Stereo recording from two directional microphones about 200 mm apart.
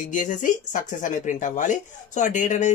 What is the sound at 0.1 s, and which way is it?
Speech, 40° left (ahead or behind).